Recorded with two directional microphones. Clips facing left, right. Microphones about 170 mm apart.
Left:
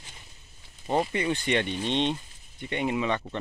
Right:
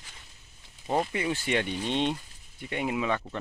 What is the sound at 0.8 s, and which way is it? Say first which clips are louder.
Speech: left 2 dB; centre (ahead or behind).